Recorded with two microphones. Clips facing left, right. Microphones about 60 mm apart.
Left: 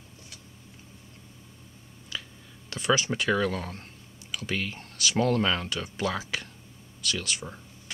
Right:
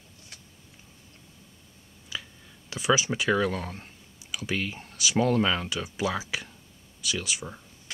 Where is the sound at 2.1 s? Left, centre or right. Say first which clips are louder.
Right 1 dB; centre.